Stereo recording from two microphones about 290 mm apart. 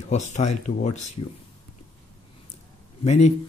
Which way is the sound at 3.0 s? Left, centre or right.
Left.